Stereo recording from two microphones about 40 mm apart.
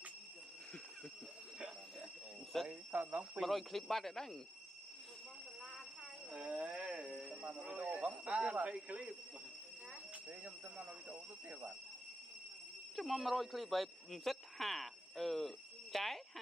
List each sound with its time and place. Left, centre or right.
2.7 s speech: right
3.4 s speech: centre
6.5 s speech: right
6.9 s speech: centre; by 9.1 s right
10.4 s speech: right
12.9 s speech: centre